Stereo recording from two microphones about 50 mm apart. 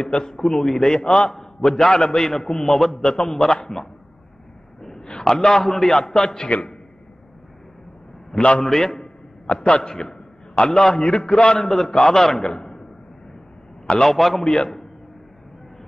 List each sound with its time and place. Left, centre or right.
0.3 s a man's voice: centre
1.0 s a man's voice: centre
1.3 s a man's voice: centre
4.8 s a sound: centre
5.6 s a man's voice: centre; by 6.7 s left
8.4 s a man's voice: left
8.6 s a man's voice: centre
13.8 s a man's voice: centre
14.1 s a man's voice: centre